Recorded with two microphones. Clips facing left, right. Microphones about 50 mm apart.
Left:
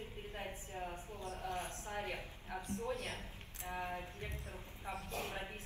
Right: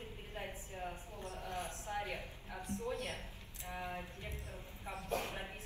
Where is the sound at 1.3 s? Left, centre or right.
Left.